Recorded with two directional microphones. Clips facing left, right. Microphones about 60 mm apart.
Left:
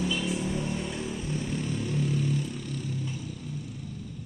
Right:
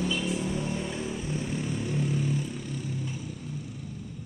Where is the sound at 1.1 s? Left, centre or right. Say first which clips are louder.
Even; centre.